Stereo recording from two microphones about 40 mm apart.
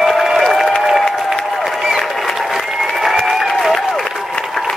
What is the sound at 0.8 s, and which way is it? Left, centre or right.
Applause, centre.